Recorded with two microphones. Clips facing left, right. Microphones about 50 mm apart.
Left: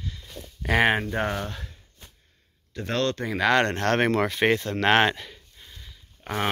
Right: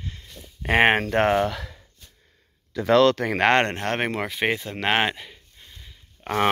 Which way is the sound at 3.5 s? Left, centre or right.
Right.